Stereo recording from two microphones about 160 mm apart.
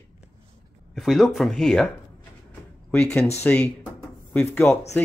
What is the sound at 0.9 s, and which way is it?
Speech, centre (ahead or behind).